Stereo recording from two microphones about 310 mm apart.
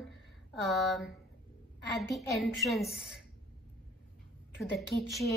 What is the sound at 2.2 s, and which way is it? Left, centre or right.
Speech, centre.